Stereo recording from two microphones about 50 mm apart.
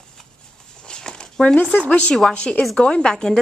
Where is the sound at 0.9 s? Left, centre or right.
Centre.